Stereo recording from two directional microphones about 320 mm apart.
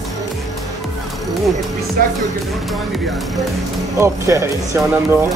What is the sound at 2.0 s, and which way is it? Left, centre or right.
Speech, right.